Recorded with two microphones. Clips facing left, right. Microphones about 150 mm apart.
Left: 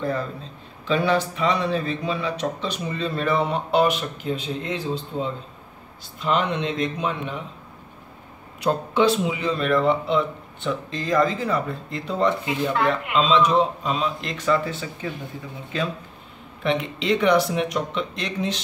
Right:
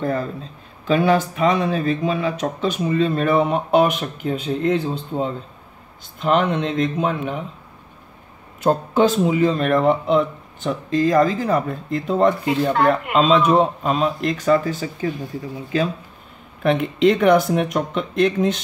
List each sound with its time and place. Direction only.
0.8 s speech: 45° right (ahead or behind)
8.5 s speech: 45° right (ahead or behind)
16.6 s speech: 50° right (ahead or behind)